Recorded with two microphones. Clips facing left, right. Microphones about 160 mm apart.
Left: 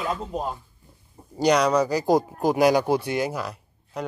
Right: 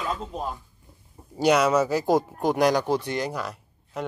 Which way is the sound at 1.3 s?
5° right (ahead or behind).